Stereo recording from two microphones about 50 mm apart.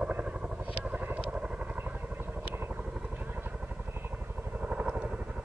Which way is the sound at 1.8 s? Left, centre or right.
Right.